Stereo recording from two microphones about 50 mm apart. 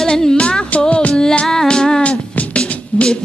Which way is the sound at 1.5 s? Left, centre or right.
Centre.